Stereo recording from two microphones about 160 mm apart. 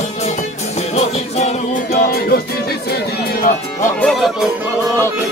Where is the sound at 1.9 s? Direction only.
80° left.